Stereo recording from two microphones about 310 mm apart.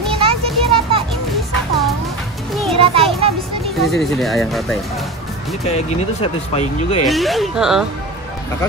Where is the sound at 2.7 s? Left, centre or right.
Centre.